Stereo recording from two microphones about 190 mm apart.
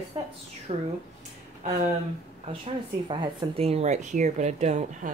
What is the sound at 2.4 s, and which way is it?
Speech, 30° right (ahead or behind).